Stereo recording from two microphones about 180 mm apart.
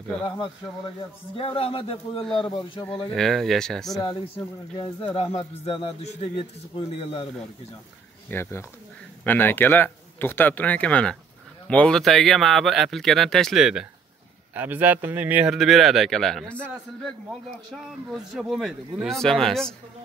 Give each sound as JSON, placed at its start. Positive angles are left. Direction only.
{"t": 1.3, "sound": "speech", "side_deg": 30}
{"t": 3.2, "sound": "speech", "side_deg": 0}
{"t": 4.7, "sound": "speech", "side_deg": 30}
{"t": 8.3, "sound": "speech", "side_deg": 15}